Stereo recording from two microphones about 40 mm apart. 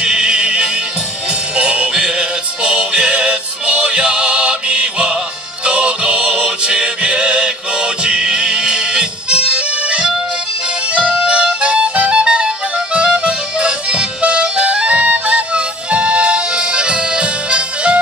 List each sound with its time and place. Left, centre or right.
0.0 s music: right